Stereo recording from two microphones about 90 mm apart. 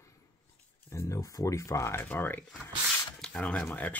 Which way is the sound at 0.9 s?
35° left (ahead or behind).